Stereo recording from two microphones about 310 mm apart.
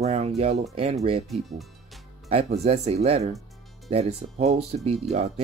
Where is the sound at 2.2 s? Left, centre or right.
Centre.